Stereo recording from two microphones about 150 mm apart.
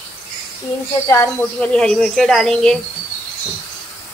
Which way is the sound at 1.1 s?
15° left (ahead or behind).